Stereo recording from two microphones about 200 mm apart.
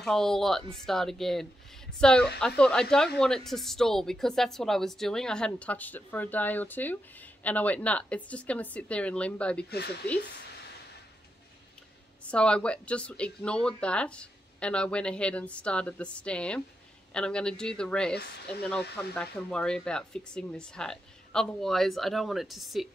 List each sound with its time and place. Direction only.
0.0 s a woman's voice: centre (ahead or behind)
9.7 s speech: 55° left (ahead or behind)
12.2 s a woman's voice: 5° left (ahead or behind)